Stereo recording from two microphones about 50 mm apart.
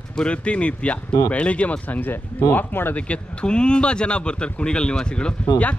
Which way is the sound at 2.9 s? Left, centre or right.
Left.